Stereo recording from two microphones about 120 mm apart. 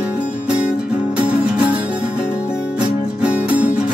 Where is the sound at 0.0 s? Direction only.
10° right (ahead or behind).